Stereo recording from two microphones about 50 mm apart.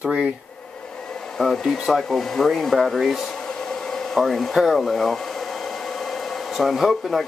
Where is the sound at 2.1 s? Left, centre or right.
Centre.